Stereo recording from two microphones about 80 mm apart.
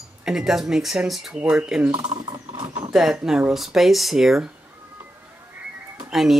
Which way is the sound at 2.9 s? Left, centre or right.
Centre.